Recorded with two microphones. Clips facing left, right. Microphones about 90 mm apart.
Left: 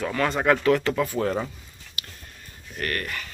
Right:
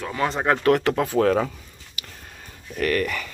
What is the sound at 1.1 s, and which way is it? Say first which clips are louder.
Speech: right 6 dB; 90° right.